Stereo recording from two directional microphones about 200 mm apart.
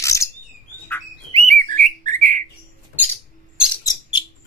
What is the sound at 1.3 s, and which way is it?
Bird, 35° right (ahead or behind).